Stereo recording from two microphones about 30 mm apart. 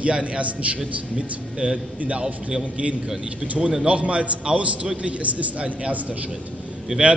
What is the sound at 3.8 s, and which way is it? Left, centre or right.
Speech, right.